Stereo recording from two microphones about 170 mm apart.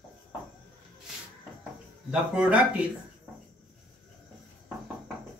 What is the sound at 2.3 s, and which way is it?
Speech, 5° right (ahead or behind).